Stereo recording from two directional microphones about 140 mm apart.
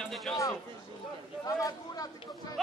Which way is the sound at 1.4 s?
25° left (ahead or behind).